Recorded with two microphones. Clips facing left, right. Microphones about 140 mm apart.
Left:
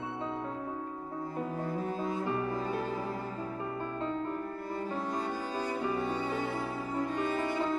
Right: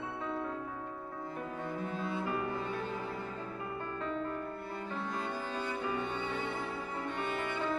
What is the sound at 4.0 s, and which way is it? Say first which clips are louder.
Music: left 2 dB; 30° left (ahead or behind).